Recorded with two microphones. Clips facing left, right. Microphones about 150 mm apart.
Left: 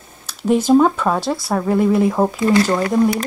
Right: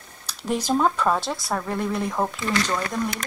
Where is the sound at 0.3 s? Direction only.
Centre (ahead or behind).